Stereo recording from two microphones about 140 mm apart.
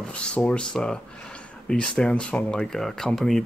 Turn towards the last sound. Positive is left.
turn(degrees=5)  # may be behind; listen again after turning